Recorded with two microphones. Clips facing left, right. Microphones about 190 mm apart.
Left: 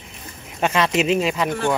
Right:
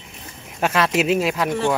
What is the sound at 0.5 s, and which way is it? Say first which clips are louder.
Speech: even; 5° right (ahead or behind).